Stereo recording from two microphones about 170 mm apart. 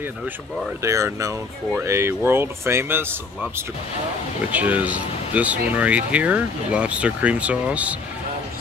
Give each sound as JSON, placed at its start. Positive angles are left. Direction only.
{"t": 0.8, "sound": "speech", "side_deg": -20}
{"t": 4.5, "sound": "speech", "side_deg": -10}